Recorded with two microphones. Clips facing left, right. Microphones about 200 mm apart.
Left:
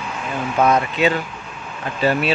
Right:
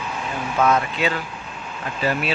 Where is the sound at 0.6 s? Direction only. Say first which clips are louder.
Left 3 dB; 20° left (ahead or behind).